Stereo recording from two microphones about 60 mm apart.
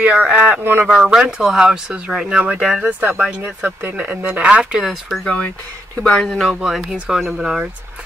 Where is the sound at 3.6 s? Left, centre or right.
Right.